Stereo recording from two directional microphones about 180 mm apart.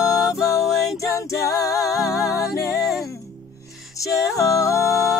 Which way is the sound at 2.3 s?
20° left (ahead or behind).